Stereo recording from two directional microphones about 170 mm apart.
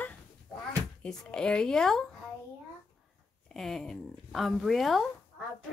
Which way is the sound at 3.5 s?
Centre (ahead or behind).